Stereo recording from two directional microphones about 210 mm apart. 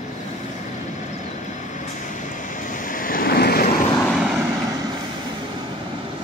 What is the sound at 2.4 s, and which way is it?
Vehicle, 40° left (ahead or behind).